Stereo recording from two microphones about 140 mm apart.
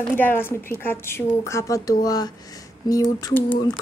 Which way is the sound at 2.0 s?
25° left (ahead or behind).